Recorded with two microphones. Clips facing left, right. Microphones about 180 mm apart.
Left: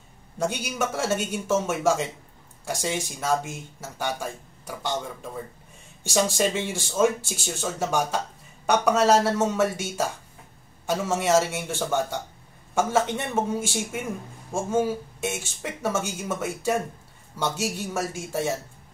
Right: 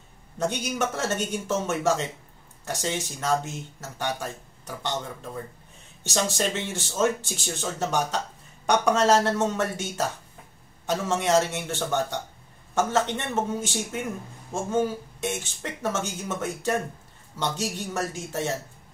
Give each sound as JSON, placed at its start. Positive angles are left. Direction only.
{"t": 0.4, "sound": "speech", "side_deg": 10}